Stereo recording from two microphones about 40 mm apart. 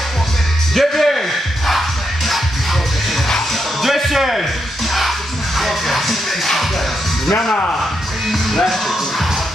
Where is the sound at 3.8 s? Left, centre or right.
Centre.